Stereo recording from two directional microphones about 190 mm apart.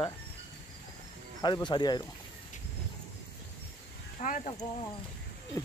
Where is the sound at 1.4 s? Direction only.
20° left (ahead or behind).